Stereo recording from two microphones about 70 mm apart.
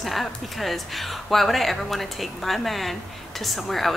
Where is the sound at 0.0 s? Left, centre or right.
Centre.